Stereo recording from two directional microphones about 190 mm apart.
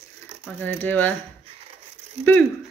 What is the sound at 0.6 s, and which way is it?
Speech, 10° left (ahead or behind).